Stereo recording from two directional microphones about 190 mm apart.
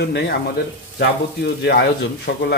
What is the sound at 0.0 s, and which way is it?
Speech, 60° left (ahead or behind).